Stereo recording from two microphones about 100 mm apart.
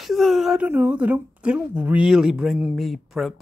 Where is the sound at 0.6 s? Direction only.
15° right (ahead or behind).